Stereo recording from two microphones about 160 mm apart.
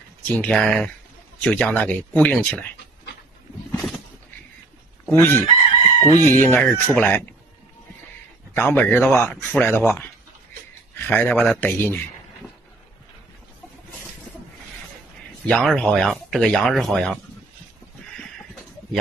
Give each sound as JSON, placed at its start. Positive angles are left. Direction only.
{"t": 0.2, "sound": "speech", "side_deg": 5}
{"t": 3.7, "sound": "a sound", "side_deg": 0}
{"t": 5.1, "sound": "speech", "side_deg": 15}
{"t": 5.8, "sound": "chicken", "side_deg": 35}
{"t": 6.2, "sound": "speech", "side_deg": 15}
{"t": 8.5, "sound": "speech", "side_deg": 15}
{"t": 15.4, "sound": "speech", "side_deg": 5}